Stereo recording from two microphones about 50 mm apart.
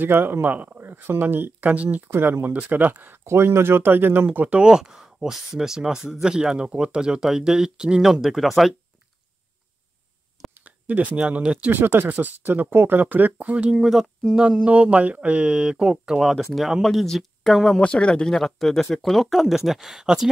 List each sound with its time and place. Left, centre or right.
0.0 s speech: right
0.7 s a sound: right
1.2 s speech: right
2.0 s speech: right
2.5 s speech: right
3.3 s speech: right
4.3 s speech: right
4.6 s speech: centre
10.5 s speech: right
11.7 s speech: right
12.2 s speech: right; by 16.2 s centre
16.2 s speech: centre
16.8 s speech: centre
17.7 s speech: left; by 20.2 s centre